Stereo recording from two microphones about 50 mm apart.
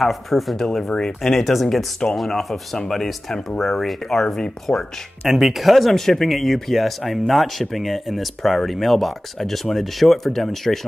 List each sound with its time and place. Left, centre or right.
0.0 s speech: centre
0.8 s speech: centre
1.2 s speech: centre
4.7 s speech: centre
5.3 s speech: centre